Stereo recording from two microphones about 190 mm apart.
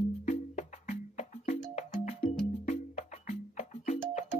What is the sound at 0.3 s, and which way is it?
Music, 35° left (ahead or behind).